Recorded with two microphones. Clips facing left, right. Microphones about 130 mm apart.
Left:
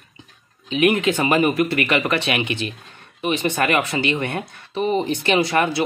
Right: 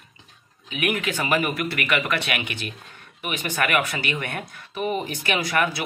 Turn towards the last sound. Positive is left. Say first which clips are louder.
# left 5 dB
turn(degrees=25)  # may be behind; listen again after turning